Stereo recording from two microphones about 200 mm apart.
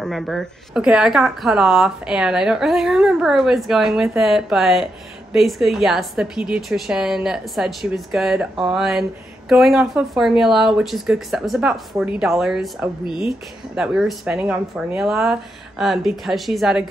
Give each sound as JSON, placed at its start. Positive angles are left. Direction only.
{"t": 0.0, "sound": "speech", "side_deg": 0}
{"t": 13.0, "sound": "speech", "side_deg": 25}
{"t": 13.7, "sound": "speech", "side_deg": -5}